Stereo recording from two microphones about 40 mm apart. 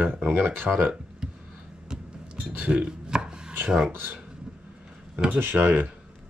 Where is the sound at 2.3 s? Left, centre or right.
Right.